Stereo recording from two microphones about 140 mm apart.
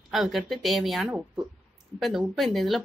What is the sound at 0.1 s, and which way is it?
A woman's voice, centre (ahead or behind).